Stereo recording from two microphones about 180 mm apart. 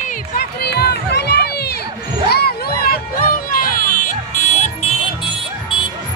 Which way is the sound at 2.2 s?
60° left (ahead or behind).